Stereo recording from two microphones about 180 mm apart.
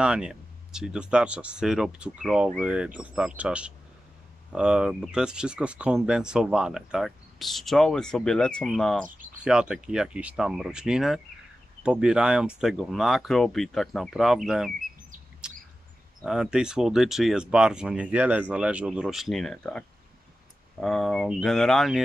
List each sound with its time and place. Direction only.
0.0 s speech: 5° right (ahead or behind)
9.0 s speech: 45° right (ahead or behind)
9.4 s speech: 5° right (ahead or behind)
15.4 s bird: 5° right (ahead or behind)
16.2 s speech: 5° right (ahead or behind)
20.8 s speech: 5° left (ahead or behind)